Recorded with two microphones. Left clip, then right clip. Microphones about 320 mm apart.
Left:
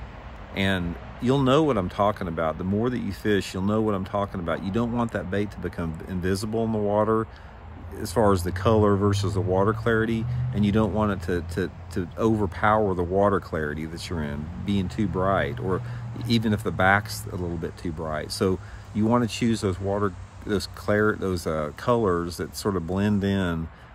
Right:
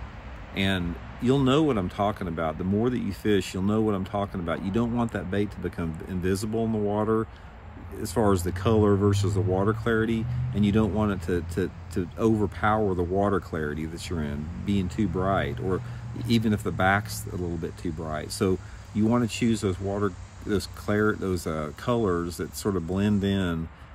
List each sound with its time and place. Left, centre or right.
0.6 s speech: centre